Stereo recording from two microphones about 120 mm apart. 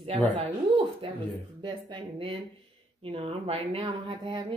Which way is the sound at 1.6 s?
45° right (ahead or behind).